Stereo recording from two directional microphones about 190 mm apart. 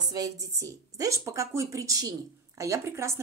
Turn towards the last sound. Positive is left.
turn(degrees=-15)  # may be behind; listen again after turning